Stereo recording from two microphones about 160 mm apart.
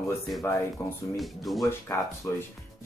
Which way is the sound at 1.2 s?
Centre (ahead or behind).